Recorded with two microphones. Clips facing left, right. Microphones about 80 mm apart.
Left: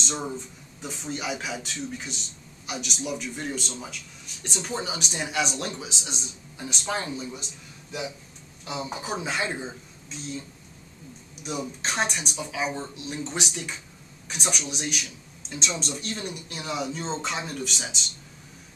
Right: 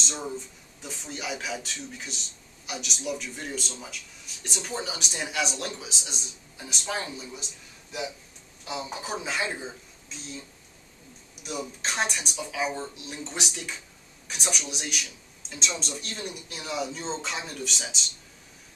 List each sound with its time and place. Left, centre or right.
0.8 s speech: centre
8.8 s speech: centre
11.4 s speech: centre